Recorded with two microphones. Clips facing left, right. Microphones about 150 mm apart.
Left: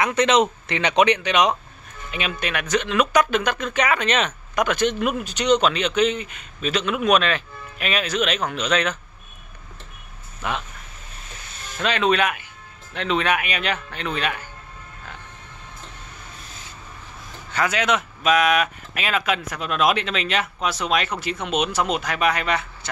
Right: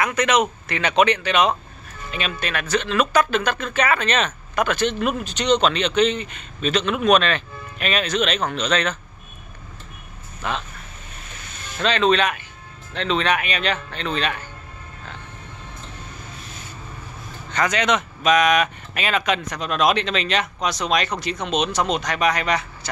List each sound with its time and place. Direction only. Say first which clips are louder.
0.0 s speech: left 1 dB; 25° left (ahead or behind)
10.4 s speech: even; 15° left (ahead or behind)
11.8 s speech: right 2 dB; 10° left (ahead or behind)
17.5 s speech: right 1 dB; 5° left (ahead or behind)